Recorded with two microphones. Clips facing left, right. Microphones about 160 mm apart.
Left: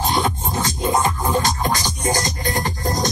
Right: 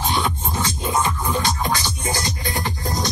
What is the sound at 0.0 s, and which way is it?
Music, 45° left (ahead or behind).